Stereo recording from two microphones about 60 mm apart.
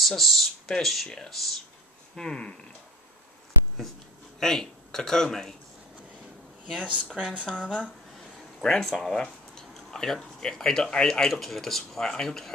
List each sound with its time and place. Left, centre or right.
0.0 s a sound: centre
0.7 s speech: centre
4.4 s speech: centre
6.8 s speech: right
8.5 s speech: centre